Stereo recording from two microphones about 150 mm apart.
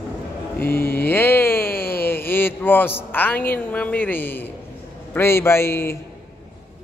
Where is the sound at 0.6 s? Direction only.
15° left (ahead or behind).